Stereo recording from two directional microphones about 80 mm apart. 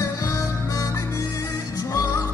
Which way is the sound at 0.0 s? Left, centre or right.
Left.